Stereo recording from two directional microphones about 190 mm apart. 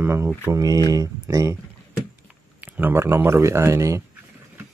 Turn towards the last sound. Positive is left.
turn(degrees=-15)  # may be behind; listen again after turning